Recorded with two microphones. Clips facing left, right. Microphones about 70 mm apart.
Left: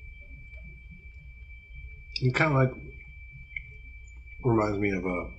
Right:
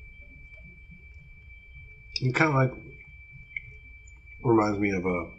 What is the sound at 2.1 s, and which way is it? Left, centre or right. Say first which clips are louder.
Speech: right 1 dB; centre.